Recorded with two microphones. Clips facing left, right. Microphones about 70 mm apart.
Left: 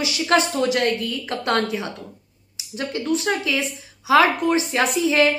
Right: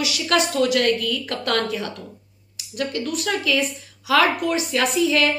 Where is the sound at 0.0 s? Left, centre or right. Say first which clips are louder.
Left 2 dB; left.